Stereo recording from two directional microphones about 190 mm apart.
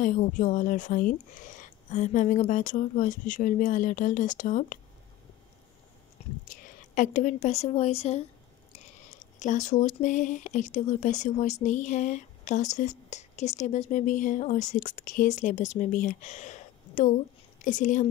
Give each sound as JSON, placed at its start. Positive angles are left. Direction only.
{"t": 0.0, "sound": "speech", "side_deg": 45}
{"t": 6.2, "sound": "whispering", "side_deg": 35}
{"t": 6.5, "sound": "a woman's voice", "side_deg": 40}
{"t": 9.4, "sound": "a woman's voice", "side_deg": 40}